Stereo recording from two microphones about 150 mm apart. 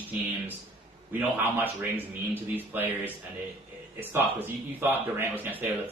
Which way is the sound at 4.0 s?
15° right (ahead or behind).